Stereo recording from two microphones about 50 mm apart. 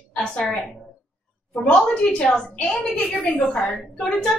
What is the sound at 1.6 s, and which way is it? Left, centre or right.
Speech, centre.